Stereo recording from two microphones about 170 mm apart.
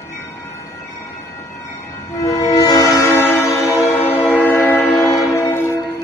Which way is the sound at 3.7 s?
10° left (ahead or behind).